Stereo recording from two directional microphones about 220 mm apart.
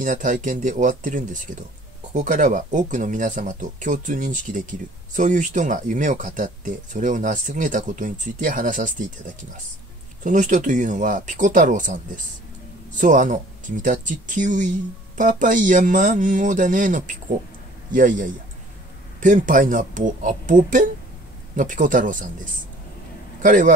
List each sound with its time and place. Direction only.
0.0 s speech: 35° right (ahead or behind)
10.2 s speech: 35° right (ahead or behind)